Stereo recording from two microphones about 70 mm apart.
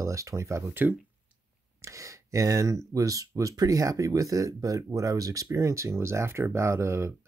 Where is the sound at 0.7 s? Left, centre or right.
Right.